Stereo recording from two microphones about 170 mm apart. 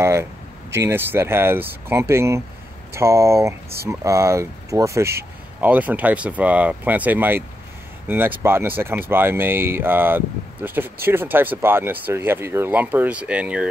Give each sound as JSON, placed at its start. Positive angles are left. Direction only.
{"t": 0.0, "sound": "speech", "side_deg": -15}